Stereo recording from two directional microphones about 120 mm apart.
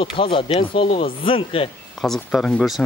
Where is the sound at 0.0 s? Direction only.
50° left (ahead or behind).